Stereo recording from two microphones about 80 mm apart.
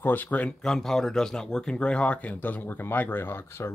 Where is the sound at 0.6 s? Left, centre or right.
Centre.